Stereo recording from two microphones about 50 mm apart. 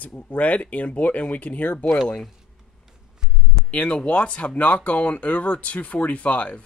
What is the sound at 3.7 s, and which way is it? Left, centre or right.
Speech, left.